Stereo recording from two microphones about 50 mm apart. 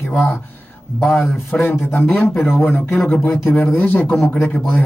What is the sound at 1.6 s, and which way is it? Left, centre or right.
Speech, left.